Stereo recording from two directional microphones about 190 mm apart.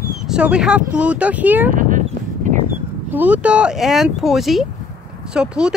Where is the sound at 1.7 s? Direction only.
40° right (ahead or behind).